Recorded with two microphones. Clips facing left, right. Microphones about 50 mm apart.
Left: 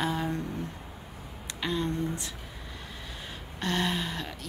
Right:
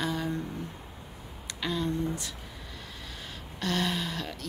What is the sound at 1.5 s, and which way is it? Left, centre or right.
Speech, centre.